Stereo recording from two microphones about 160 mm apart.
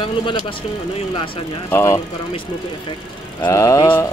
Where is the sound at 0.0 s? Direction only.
30° left (ahead or behind).